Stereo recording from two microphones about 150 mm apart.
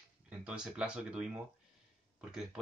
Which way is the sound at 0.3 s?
5° right (ahead or behind).